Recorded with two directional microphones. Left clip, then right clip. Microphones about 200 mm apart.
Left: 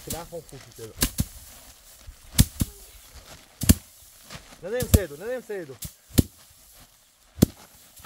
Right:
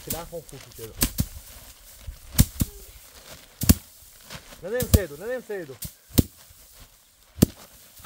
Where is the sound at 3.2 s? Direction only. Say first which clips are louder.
Right 1 dB; 25° right (ahead or behind).